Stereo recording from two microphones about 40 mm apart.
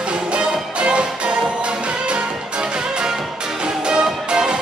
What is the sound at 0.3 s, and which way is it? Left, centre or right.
Music, right.